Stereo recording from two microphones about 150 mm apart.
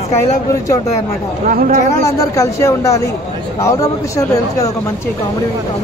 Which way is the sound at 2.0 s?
20° left (ahead or behind).